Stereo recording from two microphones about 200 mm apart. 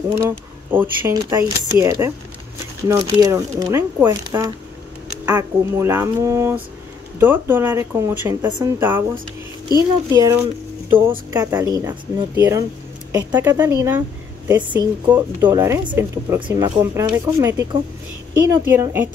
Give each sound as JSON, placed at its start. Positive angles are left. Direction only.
{"t": 0.7, "sound": "speech", "side_deg": -10}
{"t": 8.5, "sound": "a woman's voice", "side_deg": -20}
{"t": 8.7, "sound": "a woman's voice", "side_deg": -10}
{"t": 16.3, "sound": "a woman's voice", "side_deg": -25}
{"t": 16.7, "sound": "speech", "side_deg": -10}